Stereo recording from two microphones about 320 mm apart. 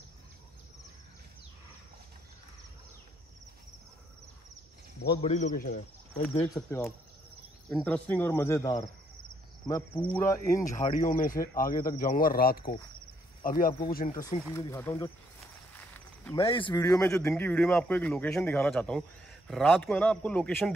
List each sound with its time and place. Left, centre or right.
5.2 s speech: left
6.4 s speech: centre
10.8 s speech: left
14.5 s speech: centre
15.7 s walk: centre
16.3 s a man's voice: centre